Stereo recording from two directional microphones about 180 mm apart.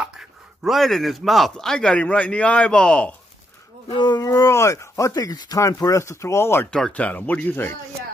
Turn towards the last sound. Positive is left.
turn(degrees=10)  # may be behind; listen again after turning